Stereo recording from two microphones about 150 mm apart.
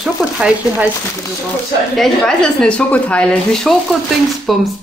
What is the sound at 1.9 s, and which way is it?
Speech, 5° left (ahead or behind).